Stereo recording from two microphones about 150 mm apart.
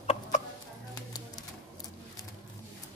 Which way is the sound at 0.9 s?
25° left (ahead or behind).